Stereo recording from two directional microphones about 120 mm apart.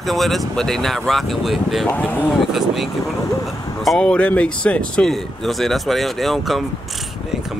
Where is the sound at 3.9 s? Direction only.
5° left (ahead or behind).